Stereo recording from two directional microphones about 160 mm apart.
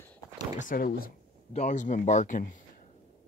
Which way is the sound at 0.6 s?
60° left (ahead or behind).